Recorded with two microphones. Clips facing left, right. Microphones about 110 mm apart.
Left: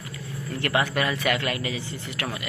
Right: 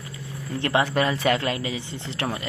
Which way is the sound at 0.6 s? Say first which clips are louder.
Right 3 dB; 20° right (ahead or behind).